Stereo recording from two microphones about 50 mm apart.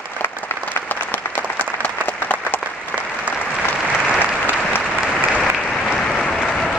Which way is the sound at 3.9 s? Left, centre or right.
Right.